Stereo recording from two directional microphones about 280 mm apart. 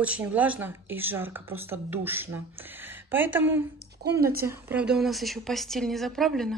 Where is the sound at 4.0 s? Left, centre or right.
Right.